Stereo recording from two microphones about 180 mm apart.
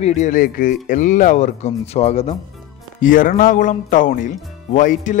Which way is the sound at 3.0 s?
50° left (ahead or behind).